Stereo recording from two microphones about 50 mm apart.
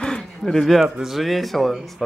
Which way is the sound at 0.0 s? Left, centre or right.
Centre.